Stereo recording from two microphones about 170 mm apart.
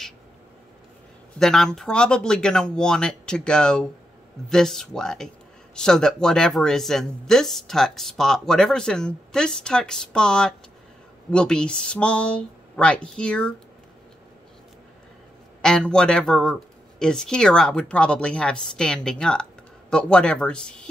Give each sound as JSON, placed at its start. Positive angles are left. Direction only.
{"t": 1.4, "sound": "speech", "side_deg": 5}
{"t": 15.6, "sound": "speech", "side_deg": 5}